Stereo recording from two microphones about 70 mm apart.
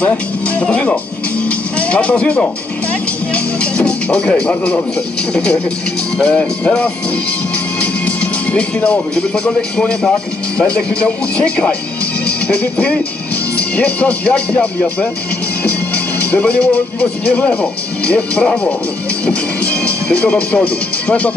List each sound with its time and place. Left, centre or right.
0.6 s speech: centre
19.2 s music: centre
20.1 s speech: centre